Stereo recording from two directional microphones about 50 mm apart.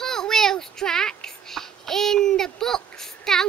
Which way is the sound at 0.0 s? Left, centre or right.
Centre.